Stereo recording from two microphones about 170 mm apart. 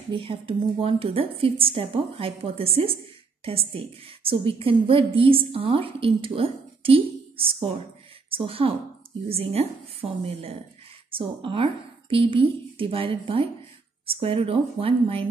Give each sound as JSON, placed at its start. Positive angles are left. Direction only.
{"t": 0.1, "sound": "a woman's voice", "side_deg": -30}